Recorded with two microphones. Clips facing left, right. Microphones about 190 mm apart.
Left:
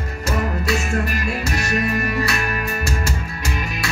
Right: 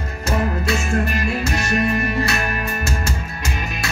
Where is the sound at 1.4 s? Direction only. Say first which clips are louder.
Right 1 dB; 25° right (ahead or behind).